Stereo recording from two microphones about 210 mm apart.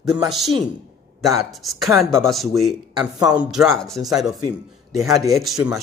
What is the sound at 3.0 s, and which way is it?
Speech, 20° right (ahead or behind).